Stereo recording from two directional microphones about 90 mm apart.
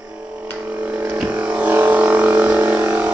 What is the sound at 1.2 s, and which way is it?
Vehicle, 15° right (ahead or behind).